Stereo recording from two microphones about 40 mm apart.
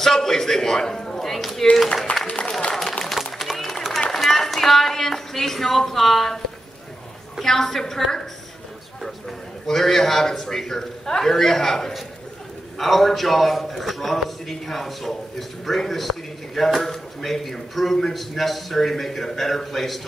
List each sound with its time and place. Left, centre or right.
0.0 s a sound: centre
2.1 s music: left
2.7 s a sound: centre
3.3 s run: centre
4.1 s speech: centre
7.4 s a man's voice: centre
9.7 s a man's voice: centre